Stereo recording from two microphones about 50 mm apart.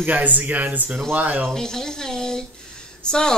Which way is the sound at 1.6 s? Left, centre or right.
Centre.